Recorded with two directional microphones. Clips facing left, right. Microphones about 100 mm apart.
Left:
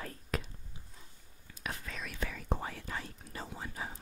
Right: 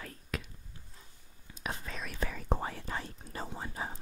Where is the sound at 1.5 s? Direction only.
25° right (ahead or behind).